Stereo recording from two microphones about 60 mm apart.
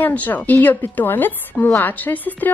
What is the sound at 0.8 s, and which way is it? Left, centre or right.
Speech, left.